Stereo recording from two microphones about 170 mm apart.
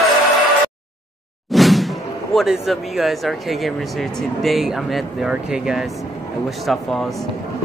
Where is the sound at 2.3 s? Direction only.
Centre (ahead or behind).